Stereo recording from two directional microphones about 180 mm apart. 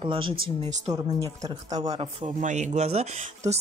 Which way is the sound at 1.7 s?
20° right (ahead or behind).